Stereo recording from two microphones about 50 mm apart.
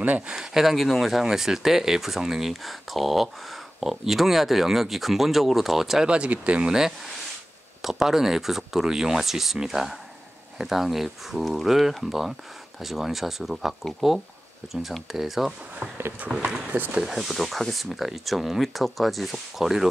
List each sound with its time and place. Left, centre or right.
0.4 s speech: centre
6.0 s speech: right
7.8 s speech: centre
17.0 s speech: centre